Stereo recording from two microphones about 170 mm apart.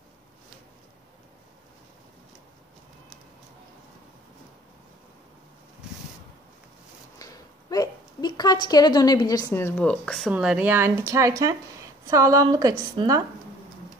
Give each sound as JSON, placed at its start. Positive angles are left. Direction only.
{"t": 7.2, "sound": "a sound", "side_deg": 20}
{"t": 9.5, "sound": "speech", "side_deg": 10}
{"t": 10.3, "sound": "a woman's voice", "side_deg": -5}